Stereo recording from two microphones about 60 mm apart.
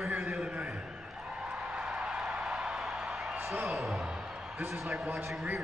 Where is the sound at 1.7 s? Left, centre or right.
Centre.